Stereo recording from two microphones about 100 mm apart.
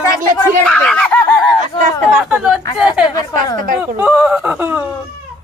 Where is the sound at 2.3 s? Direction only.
10° right (ahead or behind).